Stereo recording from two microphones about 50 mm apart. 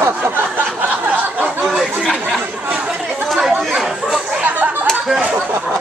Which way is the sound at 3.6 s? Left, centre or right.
Centre.